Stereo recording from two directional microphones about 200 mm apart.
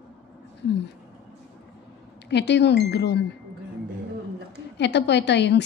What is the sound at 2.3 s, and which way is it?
Speech, 60° left (ahead or behind).